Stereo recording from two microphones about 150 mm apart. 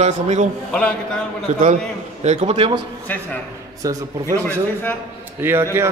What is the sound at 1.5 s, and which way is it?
A man's voice, 55° right (ahead or behind).